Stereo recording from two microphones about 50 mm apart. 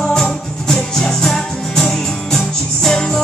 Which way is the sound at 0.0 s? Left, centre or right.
Centre.